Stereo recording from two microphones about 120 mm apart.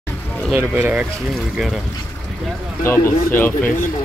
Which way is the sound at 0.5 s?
10° right (ahead or behind).